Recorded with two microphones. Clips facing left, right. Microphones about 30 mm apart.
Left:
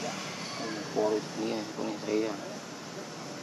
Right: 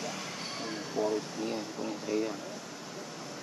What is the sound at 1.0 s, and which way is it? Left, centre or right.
Speech, left.